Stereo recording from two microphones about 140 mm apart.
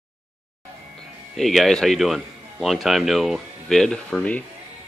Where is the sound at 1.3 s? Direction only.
Centre (ahead or behind).